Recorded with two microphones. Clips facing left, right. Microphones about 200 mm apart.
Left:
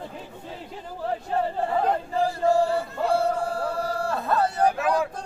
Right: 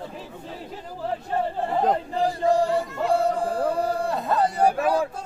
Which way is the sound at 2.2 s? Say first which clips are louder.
Right 1 dB; 15° right (ahead or behind).